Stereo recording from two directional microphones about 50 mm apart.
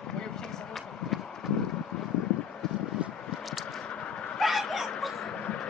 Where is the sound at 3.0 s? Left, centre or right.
Right.